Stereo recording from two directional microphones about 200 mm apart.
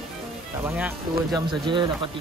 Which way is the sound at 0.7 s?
10° right (ahead or behind).